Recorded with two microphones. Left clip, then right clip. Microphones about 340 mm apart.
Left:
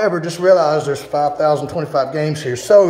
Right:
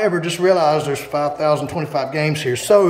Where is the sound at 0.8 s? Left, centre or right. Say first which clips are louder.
Left 2 dB; centre.